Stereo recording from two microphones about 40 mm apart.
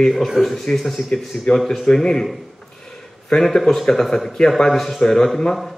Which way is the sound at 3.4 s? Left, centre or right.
Centre.